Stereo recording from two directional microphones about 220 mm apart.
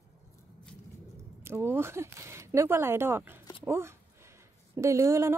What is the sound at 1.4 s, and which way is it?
Speech, 10° right (ahead or behind).